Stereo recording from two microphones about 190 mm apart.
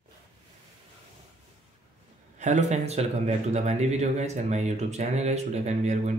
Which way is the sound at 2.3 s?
40° right (ahead or behind).